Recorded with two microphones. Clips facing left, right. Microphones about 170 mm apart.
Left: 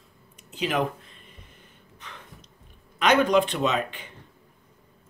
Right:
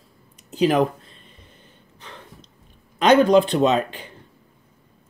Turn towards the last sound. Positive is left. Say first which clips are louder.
# right 7 dB
turn(degrees=-35)  # may be behind; listen again after turning